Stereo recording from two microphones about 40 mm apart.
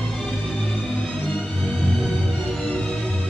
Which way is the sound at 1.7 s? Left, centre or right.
Left.